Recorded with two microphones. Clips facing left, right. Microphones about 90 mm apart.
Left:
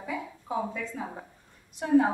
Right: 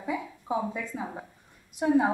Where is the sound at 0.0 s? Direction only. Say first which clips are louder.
Right 2 dB; 20° right (ahead or behind).